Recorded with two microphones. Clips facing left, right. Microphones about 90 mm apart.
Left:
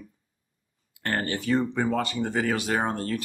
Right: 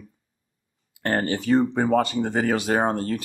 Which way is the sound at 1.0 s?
30° right (ahead or behind).